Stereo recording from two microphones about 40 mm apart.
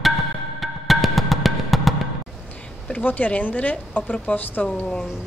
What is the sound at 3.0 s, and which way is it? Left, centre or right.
A woman's voice, left.